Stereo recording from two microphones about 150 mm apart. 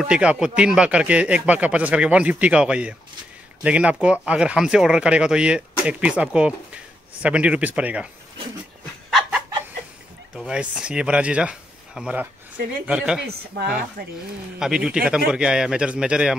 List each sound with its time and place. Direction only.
0.0 s speech: 5° right (ahead or behind)
10.3 s a man's voice: 5° right (ahead or behind)
13.5 s speech: 90° right
14.0 s speech: 80° right
14.6 s a man's voice: 5° right (ahead or behind)